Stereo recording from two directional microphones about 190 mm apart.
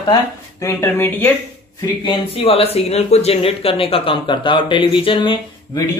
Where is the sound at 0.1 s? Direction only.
15° left (ahead or behind).